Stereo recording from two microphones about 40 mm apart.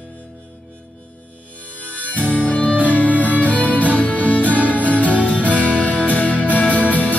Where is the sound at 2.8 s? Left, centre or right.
Left.